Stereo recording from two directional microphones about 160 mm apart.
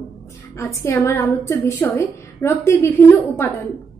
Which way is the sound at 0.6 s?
15° left (ahead or behind).